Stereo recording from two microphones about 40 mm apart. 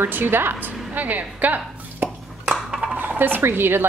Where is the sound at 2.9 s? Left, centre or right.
Right.